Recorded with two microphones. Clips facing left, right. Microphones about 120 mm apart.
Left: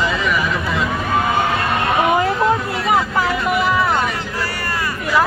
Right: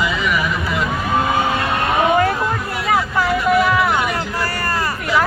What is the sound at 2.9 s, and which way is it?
Vehicle, 25° left (ahead or behind).